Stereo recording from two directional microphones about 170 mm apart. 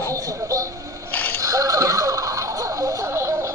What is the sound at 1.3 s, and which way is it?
Music, 20° right (ahead or behind).